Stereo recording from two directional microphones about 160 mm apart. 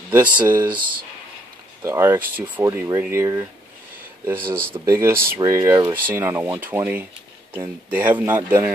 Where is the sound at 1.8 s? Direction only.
15° right (ahead or behind).